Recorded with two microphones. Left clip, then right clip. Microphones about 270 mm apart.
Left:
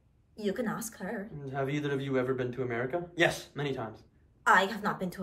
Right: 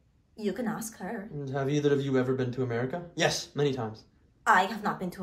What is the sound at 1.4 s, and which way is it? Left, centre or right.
A man's voice, centre.